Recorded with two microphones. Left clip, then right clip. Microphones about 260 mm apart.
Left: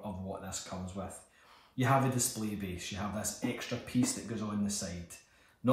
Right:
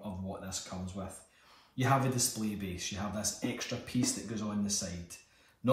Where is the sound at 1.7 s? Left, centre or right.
Centre.